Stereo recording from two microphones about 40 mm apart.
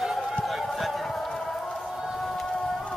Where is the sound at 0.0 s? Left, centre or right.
Centre.